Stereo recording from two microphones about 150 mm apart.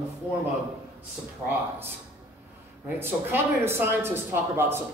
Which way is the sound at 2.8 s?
15° right (ahead or behind).